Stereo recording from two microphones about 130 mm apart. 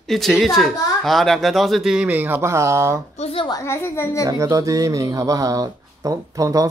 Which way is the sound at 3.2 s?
50° left (ahead or behind).